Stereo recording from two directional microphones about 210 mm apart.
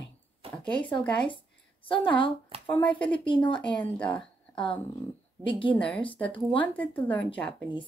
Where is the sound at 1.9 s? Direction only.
25° left (ahead or behind).